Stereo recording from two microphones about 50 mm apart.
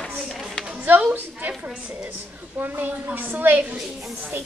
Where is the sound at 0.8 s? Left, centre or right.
Right.